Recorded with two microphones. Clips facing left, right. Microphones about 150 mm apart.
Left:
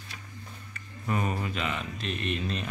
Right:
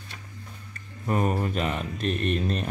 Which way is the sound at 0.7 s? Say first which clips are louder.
Right 4 dB; 40° right (ahead or behind).